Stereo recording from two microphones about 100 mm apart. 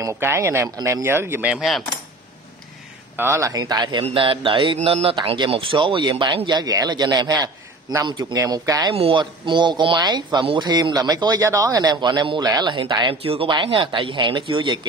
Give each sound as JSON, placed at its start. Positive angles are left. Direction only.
{"t": 0.0, "sound": "speech", "side_deg": -25}
{"t": 3.2, "sound": "speech", "side_deg": -25}
{"t": 3.5, "sound": "a man's voice", "side_deg": -40}
{"t": 4.0, "sound": "a man's voice", "side_deg": -60}
{"t": 8.9, "sound": "speech", "side_deg": -70}
{"t": 9.2, "sound": "a man's voice", "side_deg": -50}
{"t": 11.4, "sound": "a man's voice", "side_deg": -30}
{"t": 13.1, "sound": "speech", "side_deg": -75}
{"t": 13.5, "sound": "speech", "side_deg": -60}